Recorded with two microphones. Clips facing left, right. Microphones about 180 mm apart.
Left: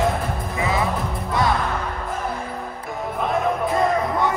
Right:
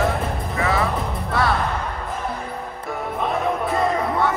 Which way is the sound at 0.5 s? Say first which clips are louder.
Right 1 dB; 15° left (ahead or behind).